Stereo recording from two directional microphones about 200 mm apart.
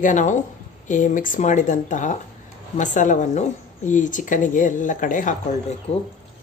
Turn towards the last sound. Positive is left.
turn(degrees=40)  # may be behind; listen again after turning